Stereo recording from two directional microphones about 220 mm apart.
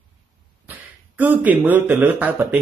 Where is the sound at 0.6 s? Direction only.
10° right (ahead or behind).